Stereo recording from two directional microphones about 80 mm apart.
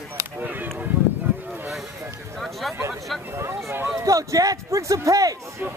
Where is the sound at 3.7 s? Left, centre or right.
Right.